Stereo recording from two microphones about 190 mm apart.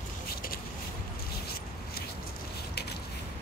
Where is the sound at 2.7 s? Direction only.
60° left (ahead or behind).